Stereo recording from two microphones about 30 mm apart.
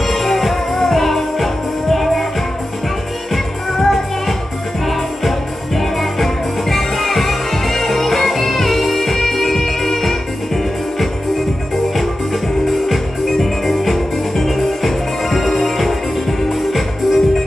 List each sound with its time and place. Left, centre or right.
0.0 s music: centre
3.7 s music: centre
5.8 s music: centre
12.7 s music: centre